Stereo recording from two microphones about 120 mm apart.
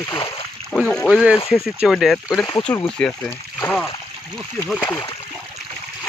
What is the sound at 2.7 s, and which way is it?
Speech, 10° left (ahead or behind).